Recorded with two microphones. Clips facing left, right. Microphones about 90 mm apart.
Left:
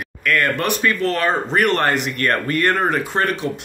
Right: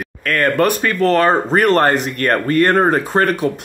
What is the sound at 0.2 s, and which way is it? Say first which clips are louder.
Speech: right 4 dB; 35° right (ahead or behind).